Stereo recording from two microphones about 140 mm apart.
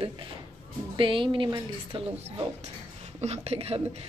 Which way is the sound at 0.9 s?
35° right (ahead or behind).